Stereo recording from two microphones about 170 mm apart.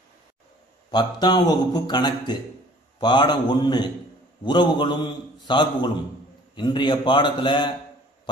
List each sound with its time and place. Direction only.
0.9 s a man's voice: 25° left (ahead or behind)